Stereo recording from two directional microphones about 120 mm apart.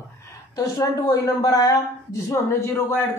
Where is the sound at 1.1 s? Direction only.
30° left (ahead or behind).